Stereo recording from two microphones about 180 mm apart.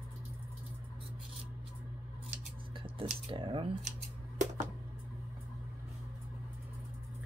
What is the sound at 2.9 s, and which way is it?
Speech, 30° right (ahead or behind).